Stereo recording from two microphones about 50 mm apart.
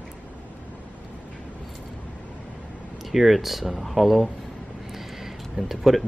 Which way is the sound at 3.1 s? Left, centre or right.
Centre.